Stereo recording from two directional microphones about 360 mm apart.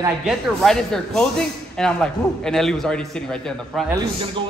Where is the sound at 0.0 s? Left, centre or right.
Centre.